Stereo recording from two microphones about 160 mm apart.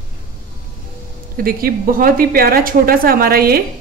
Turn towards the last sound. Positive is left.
turn(degrees=-70)  # may be behind; listen again after turning